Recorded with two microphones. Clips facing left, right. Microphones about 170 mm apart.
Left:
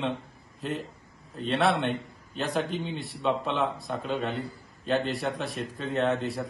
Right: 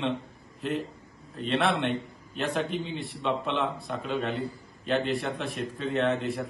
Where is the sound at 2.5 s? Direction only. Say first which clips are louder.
Left 1 dB; centre (ahead or behind).